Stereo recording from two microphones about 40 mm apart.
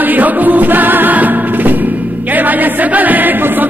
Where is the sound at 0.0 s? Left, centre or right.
Right.